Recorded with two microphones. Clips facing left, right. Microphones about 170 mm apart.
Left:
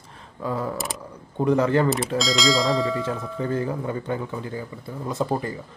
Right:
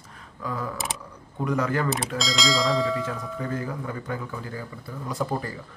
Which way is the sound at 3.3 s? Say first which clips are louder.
Left 7 dB; 30° left (ahead or behind).